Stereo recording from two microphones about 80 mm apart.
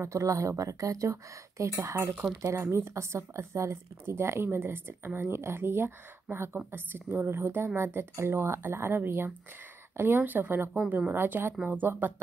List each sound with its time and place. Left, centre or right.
0.0 s speech: right